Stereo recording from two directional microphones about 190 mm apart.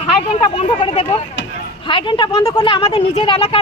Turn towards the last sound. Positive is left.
turn(degrees=30)  # may be behind; listen again after turning